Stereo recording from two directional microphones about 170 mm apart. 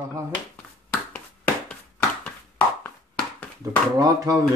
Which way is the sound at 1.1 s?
5° left (ahead or behind).